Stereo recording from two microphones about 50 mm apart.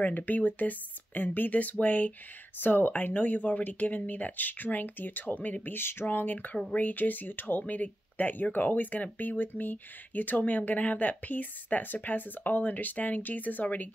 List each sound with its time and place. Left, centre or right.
0.0 s speech: left
5.8 s speech: left
6.0 s speech: left